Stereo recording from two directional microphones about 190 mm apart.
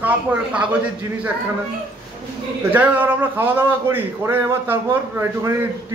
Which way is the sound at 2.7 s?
10° right (ahead or behind).